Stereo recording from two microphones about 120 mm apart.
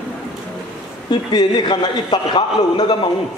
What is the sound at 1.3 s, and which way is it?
A man's voice, 35° left (ahead or behind).